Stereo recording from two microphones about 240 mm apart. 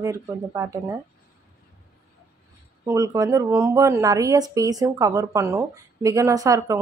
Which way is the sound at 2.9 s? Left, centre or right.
Centre.